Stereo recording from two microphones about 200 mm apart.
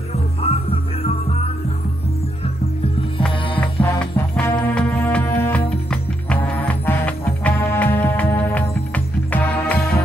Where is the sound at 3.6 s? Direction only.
5° left (ahead or behind).